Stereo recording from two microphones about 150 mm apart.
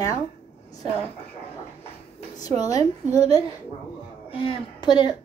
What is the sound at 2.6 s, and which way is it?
Speech, 25° left (ahead or behind).